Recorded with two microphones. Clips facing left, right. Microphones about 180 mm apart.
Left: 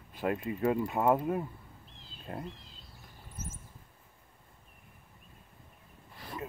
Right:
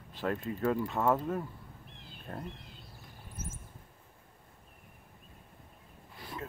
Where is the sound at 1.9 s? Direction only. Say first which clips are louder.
Left 2 dB; 60° right (ahead or behind).